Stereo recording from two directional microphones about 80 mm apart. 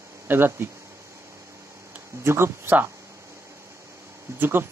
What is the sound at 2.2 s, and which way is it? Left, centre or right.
Speech, right.